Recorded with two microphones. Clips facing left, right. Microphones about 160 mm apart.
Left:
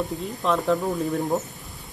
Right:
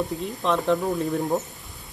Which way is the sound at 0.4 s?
Centre (ahead or behind).